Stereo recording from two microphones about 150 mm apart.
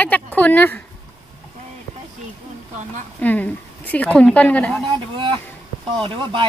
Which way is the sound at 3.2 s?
10° left (ahead or behind).